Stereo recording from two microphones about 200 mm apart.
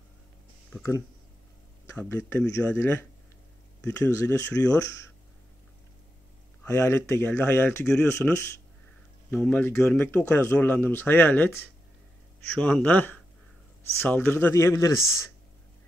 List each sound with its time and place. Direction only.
1.9 s speech: 10° left (ahead or behind)
6.6 s speech: 15° left (ahead or behind)